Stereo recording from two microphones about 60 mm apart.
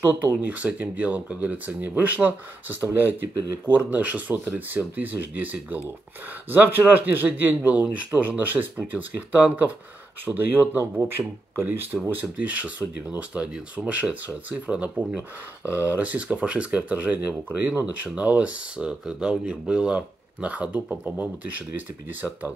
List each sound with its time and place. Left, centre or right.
0.0 s speech: right
12.1 s speech: right